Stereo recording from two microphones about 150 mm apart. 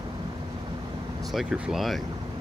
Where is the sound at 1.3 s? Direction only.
5° right (ahead or behind).